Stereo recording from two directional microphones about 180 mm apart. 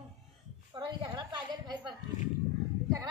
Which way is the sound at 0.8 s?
25° right (ahead or behind).